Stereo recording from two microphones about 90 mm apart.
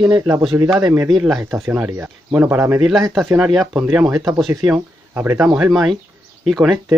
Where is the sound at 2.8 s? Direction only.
Centre (ahead or behind).